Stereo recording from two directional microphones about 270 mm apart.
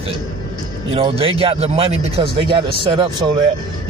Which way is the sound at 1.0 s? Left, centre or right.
Right.